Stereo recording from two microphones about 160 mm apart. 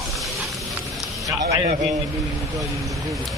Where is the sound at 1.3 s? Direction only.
20° right (ahead or behind).